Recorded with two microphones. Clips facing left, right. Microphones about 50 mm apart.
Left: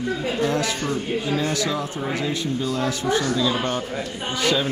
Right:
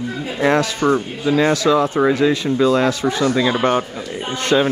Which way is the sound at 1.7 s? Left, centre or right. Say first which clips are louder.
Right 11 dB; right.